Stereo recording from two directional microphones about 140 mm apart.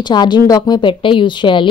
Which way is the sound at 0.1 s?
30° left (ahead or behind).